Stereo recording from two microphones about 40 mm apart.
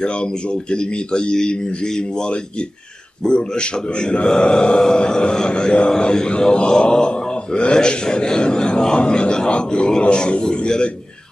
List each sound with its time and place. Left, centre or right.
0.0 s a man's voice: left
3.3 s a man's voice: left